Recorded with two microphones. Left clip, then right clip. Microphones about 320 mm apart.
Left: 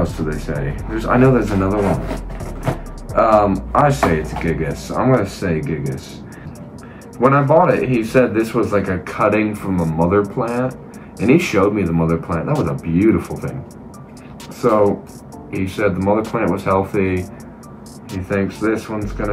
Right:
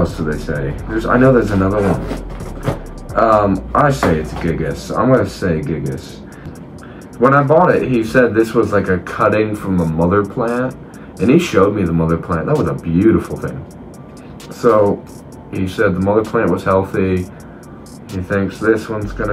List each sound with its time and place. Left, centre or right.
0.2 s speech: centre
7.2 s speech: centre
14.6 s speech: centre